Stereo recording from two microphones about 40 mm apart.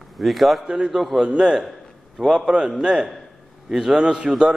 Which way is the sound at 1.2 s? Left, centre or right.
Centre.